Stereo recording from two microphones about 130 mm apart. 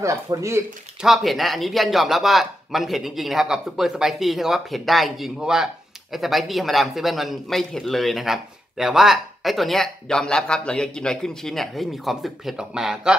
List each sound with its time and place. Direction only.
0.0 s speech: 25° right (ahead or behind)
1.0 s a man's voice: centre (ahead or behind)